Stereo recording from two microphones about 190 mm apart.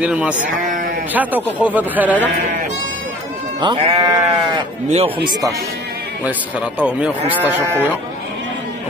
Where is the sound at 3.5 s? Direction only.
25° right (ahead or behind).